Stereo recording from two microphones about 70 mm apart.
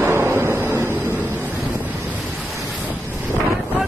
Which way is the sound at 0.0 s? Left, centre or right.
Right.